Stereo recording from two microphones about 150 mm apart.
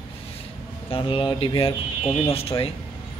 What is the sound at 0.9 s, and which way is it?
A man's voice, 35° left (ahead or behind).